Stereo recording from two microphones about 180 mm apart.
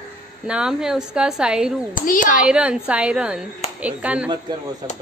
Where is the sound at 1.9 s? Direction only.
50° left (ahead or behind).